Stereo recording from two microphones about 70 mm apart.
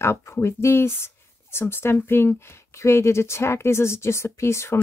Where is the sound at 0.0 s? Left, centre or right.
Left.